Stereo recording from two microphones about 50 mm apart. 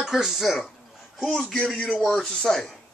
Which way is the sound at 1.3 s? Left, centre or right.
Centre.